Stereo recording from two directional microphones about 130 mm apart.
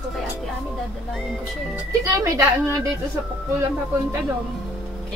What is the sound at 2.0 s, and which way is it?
Speech, 25° right (ahead or behind).